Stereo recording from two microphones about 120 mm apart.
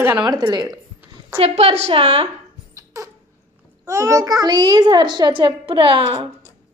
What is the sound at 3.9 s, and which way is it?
A child's voice, 25° right (ahead or behind).